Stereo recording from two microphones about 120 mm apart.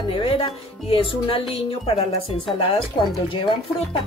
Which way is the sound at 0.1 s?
50° left (ahead or behind).